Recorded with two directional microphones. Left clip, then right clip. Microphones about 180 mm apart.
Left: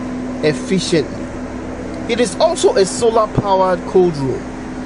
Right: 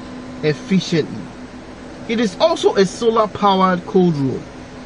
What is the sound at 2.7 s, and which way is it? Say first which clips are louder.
Speech: left 2 dB; 25° left (ahead or behind).